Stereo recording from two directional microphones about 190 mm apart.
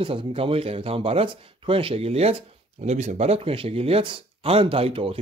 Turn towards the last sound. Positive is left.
turn(degrees=-30)  # may be behind; listen again after turning